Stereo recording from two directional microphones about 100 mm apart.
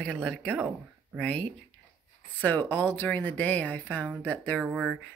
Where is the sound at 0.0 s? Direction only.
10° left (ahead or behind).